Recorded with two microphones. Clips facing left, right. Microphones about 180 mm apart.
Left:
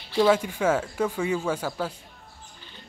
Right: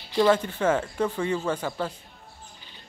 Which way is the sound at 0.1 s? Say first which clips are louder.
Even; 5° left (ahead or behind).